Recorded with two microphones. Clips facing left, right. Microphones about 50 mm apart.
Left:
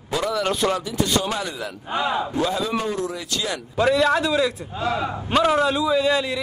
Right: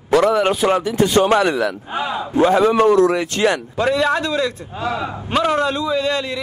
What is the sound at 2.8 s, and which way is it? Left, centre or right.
Speech, right.